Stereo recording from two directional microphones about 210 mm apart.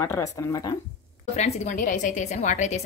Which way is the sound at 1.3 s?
30° left (ahead or behind).